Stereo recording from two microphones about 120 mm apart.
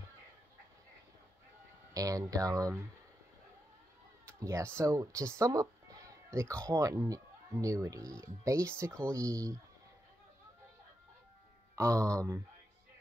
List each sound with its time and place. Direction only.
2.0 s speech: 30° right (ahead or behind)
4.3 s speech: 25° right (ahead or behind)
11.7 s speech: 25° right (ahead or behind)